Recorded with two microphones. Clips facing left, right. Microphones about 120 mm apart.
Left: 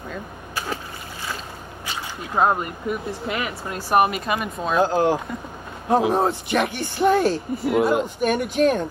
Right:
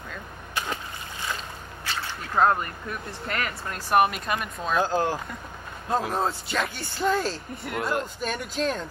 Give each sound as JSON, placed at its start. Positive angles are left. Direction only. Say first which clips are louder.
{"t": 1.9, "sound": "speech", "louder": "left 1 dB", "side_deg": 15}
{"t": 4.7, "sound": "speech", "louder": "left 6 dB", "side_deg": 15}
{"t": 7.5, "sound": "speech", "louder": "left 8 dB", "side_deg": 0}
{"t": 8.2, "sound": "speech", "louder": "left 9 dB", "side_deg": 15}